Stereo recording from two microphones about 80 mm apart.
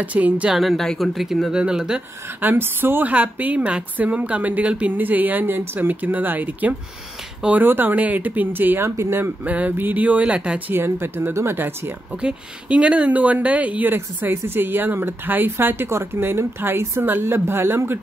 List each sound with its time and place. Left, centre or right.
0.0 s speech: centre
0.5 s speech: centre
2.4 s speech: right
9.4 s speech: centre
10.7 s speech: right
12.2 s speech: centre; by 17.9 s right